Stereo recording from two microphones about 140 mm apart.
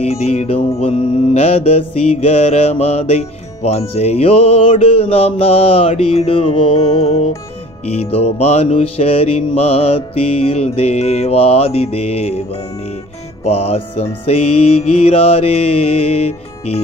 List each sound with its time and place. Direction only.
0.0 s music: 50° left (ahead or behind)
13.5 s music: 45° left (ahead or behind)